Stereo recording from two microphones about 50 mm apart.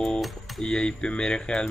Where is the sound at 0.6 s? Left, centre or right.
Centre.